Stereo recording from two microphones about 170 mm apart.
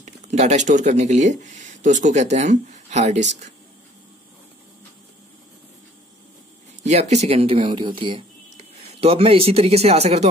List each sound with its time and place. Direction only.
0.0 s speech: 45° right (ahead or behind)
6.8 s speech: 40° right (ahead or behind)